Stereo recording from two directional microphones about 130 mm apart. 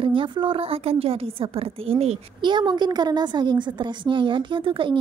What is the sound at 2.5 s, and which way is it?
A woman's voice, 35° right (ahead or behind).